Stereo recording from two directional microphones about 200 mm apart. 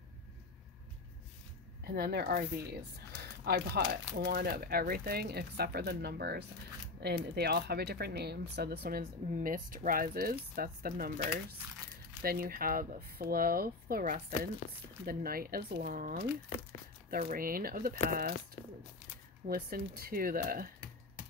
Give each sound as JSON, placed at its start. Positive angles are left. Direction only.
{"t": 1.9, "sound": "speech", "side_deg": -50}
{"t": 19.5, "sound": "speech", "side_deg": -45}